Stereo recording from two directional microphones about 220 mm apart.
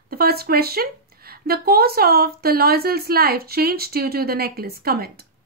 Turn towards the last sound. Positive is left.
turn(degrees=-45)  # may be behind; listen again after turning